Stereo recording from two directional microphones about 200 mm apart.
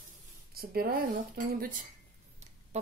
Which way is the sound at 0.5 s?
50° right (ahead or behind).